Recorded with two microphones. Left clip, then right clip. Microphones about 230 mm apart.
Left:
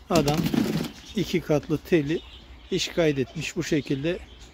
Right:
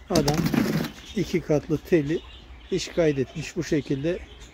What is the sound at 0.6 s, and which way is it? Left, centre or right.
Speech, right.